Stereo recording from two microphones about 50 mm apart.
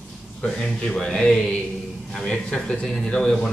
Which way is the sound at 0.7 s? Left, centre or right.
Centre.